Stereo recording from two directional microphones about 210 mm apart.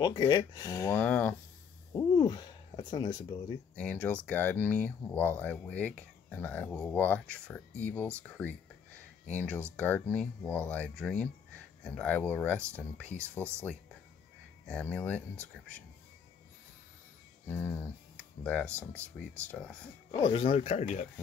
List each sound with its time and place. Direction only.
0.0 s speech: 20° left (ahead or behind)
2.0 s speech: 20° left (ahead or behind)
3.7 s speech: 5° left (ahead or behind)
14.7 s speech: 5° left (ahead or behind)
17.5 s speech: 10° left (ahead or behind)
18.7 s speech: 10° right (ahead or behind)
19.5 s speech: 5° left (ahead or behind)
20.1 s speech: 25° left (ahead or behind)